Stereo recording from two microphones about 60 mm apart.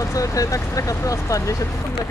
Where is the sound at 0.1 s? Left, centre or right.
Left.